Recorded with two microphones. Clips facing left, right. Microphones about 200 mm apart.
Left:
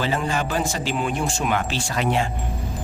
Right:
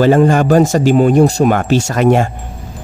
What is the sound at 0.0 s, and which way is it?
Speech, 50° right (ahead or behind).